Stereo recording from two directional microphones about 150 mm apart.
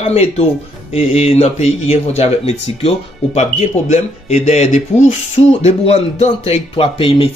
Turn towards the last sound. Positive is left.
turn(degrees=40)  # may be behind; listen again after turning